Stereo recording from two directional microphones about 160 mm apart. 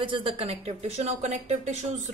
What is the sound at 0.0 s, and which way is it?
A woman's voice, 35° right (ahead or behind).